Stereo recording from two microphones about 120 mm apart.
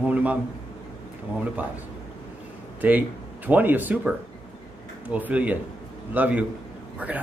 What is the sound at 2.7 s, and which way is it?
Speech, 15° right (ahead or behind).